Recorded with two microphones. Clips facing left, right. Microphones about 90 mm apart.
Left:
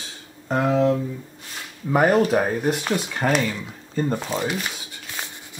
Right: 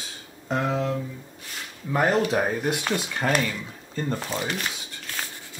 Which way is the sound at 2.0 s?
10° left (ahead or behind).